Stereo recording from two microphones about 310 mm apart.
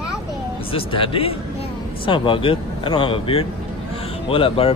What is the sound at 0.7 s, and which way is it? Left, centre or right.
Speech, centre.